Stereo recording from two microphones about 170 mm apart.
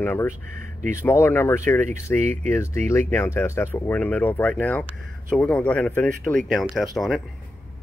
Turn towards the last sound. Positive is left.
turn(degrees=0)  # may be behind; listen again after turning